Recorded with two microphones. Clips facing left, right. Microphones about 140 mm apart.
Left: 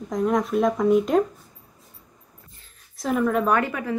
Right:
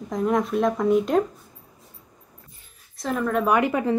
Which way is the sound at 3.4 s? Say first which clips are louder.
Right 1 dB; 10° right (ahead or behind).